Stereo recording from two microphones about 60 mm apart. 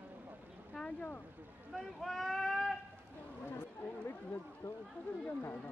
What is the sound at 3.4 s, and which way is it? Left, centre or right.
Speech, left.